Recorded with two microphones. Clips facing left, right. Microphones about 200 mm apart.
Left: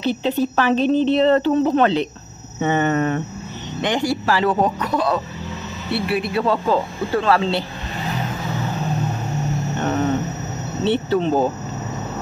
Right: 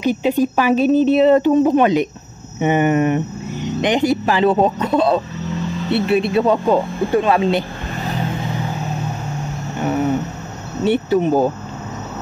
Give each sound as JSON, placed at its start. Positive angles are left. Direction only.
{"t": 0.0, "sound": "speech", "side_deg": -10}
{"t": 9.8, "sound": "a sound", "side_deg": -10}
{"t": 10.8, "sound": "speech", "side_deg": -10}